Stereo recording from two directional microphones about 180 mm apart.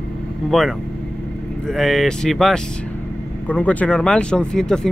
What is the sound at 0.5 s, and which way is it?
Speech, centre (ahead or behind).